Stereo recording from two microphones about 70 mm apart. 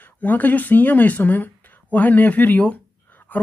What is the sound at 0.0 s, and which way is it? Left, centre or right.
Speech, left.